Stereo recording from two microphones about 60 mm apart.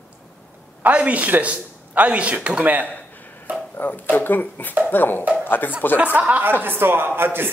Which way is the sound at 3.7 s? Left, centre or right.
Left.